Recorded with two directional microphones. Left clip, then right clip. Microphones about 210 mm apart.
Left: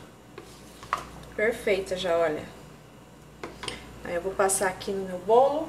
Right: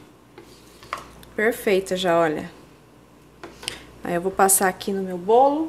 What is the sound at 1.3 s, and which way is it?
A woman's voice, 55° right (ahead or behind).